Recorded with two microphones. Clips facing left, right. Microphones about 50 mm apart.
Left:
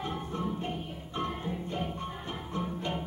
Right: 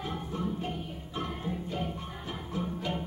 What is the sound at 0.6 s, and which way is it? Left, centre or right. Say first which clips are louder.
Music: even; centre.